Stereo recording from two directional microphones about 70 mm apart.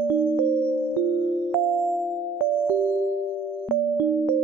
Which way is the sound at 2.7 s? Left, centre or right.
Centre.